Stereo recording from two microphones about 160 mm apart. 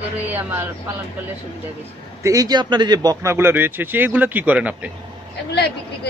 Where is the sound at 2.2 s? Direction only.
20° right (ahead or behind).